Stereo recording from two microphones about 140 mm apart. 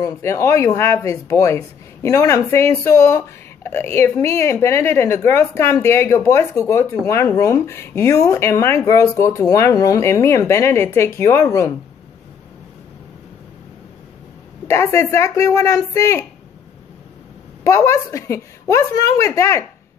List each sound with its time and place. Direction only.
0.0 s speech: 20° left (ahead or behind)
14.7 s speech: 20° left (ahead or behind)
17.6 s speech: 20° left (ahead or behind)